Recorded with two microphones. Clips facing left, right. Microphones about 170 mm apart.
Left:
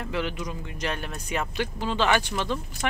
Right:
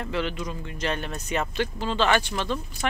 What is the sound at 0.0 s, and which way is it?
Speech, 10° left (ahead or behind).